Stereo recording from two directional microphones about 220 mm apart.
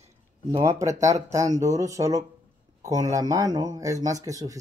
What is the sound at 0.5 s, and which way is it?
Speech, 15° right (ahead or behind).